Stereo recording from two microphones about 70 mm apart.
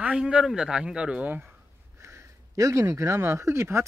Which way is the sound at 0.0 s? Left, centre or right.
Centre.